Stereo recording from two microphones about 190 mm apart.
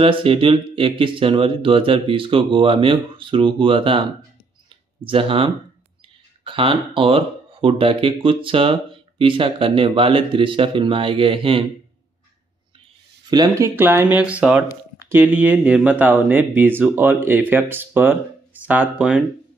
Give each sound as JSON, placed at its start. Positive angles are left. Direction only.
{"t": 0.0, "sound": "speech", "side_deg": -30}
{"t": 5.0, "sound": "speech", "side_deg": -30}
{"t": 13.3, "sound": "speech", "side_deg": -20}